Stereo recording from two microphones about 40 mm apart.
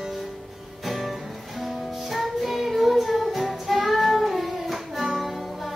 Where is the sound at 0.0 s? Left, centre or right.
Centre.